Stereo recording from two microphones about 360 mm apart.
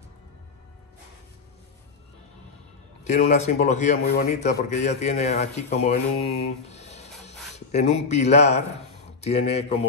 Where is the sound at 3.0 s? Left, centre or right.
Centre.